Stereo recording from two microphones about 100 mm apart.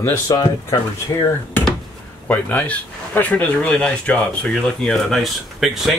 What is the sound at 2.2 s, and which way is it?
Speech, 15° left (ahead or behind).